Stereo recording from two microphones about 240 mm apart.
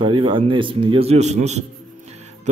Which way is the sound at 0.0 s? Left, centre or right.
Right.